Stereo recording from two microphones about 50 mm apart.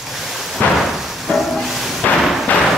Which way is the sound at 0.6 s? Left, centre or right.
Left.